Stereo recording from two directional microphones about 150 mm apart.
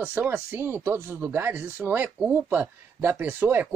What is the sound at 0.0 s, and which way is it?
Speech, 10° right (ahead or behind).